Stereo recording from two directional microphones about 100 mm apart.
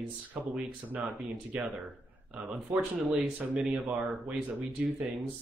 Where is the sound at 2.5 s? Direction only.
5° right (ahead or behind).